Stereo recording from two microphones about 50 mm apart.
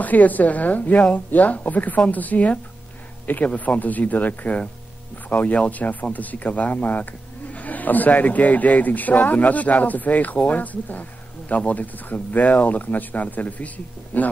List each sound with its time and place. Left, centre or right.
0.0 s speech: left